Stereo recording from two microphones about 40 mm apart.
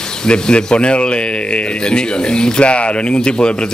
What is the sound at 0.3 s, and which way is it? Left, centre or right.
Speech, left.